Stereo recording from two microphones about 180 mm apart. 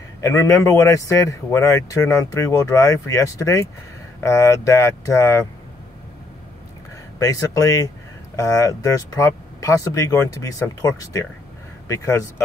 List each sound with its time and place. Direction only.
0.2 s a man's voice: 15° left (ahead or behind)
7.2 s a man's voice: 20° left (ahead or behind)